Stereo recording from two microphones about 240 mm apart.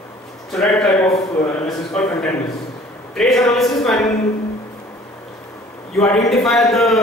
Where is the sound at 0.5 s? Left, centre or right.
Centre.